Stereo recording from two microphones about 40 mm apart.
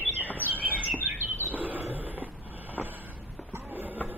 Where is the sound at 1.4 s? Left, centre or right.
Right.